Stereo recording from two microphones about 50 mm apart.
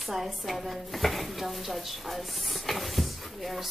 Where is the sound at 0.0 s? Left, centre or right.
Centre.